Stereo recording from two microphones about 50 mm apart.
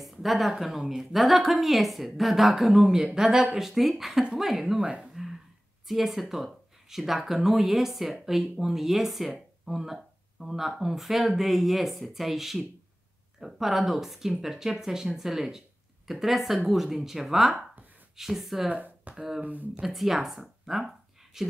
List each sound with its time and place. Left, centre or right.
0.0 s a woman's voice: centre
4.7 s speech: centre
5.1 s a sound: centre
5.9 s speech: centre
18.7 s speech: right
19.1 s a woman's voice: centre
19.4 s speech: right
19.7 s speech: centre